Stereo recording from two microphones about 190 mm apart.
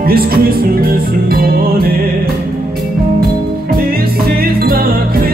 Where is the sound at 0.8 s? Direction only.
50° right (ahead or behind).